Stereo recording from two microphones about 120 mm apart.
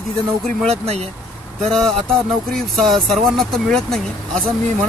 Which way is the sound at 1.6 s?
5° left (ahead or behind).